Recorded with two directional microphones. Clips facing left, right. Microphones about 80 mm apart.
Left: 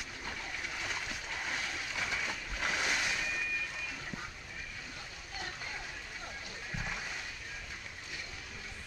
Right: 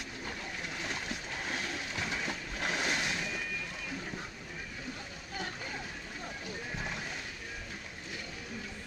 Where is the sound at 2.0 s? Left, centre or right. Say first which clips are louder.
Even; right.